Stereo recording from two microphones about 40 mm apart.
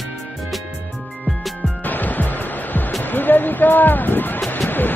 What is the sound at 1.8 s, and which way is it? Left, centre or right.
Music, left.